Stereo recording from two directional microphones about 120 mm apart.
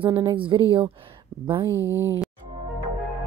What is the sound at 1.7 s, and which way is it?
Speech, 25° left (ahead or behind).